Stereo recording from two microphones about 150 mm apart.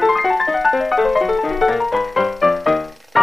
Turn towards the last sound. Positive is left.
turn(degrees=0)  # may be behind; listen again after turning